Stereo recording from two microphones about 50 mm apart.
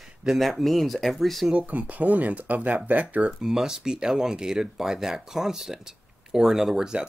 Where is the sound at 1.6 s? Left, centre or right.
Right.